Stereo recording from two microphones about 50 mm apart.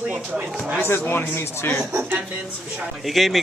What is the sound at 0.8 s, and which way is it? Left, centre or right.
A man's voice, left.